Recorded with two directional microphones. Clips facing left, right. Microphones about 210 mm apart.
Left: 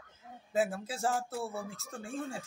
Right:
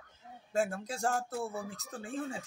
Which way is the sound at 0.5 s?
5° left (ahead or behind).